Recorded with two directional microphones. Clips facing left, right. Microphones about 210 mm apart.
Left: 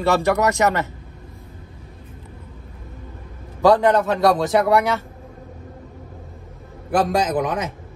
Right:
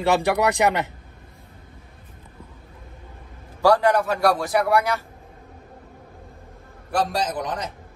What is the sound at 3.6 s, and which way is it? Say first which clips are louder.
A man's voice: left 3 dB; 20° left (ahead or behind).